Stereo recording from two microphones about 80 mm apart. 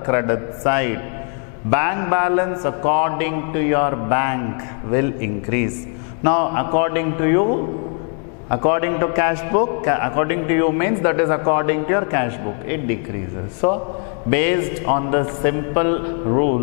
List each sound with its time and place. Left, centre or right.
0.0 s a man's voice: centre